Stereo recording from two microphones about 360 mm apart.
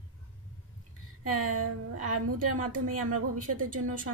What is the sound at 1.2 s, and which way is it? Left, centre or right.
A woman's voice, right.